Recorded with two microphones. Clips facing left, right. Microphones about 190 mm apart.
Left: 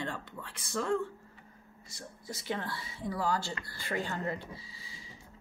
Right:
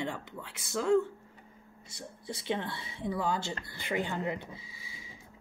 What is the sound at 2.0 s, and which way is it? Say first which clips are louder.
Speech: right 3 dB; 20° right (ahead or behind).